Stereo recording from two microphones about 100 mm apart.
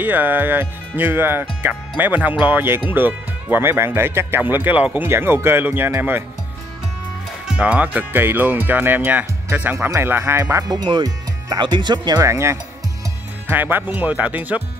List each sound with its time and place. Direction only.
0.0 s speech: 20° right (ahead or behind)
7.4 s speech: 10° right (ahead or behind)
10.7 s speech: 45° right (ahead or behind)
12.3 s speech: 30° right (ahead or behind)